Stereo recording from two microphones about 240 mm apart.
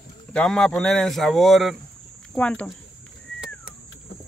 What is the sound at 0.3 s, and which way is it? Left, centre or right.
A man's voice, centre.